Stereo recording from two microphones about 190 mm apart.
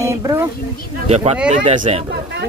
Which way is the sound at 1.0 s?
35° right (ahead or behind).